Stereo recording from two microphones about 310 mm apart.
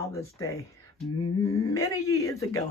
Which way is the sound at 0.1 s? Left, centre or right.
Centre.